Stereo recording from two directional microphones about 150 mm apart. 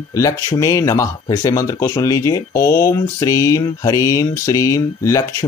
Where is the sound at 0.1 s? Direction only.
25° left (ahead or behind).